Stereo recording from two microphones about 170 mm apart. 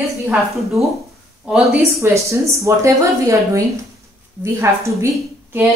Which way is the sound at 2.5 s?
15° right (ahead or behind).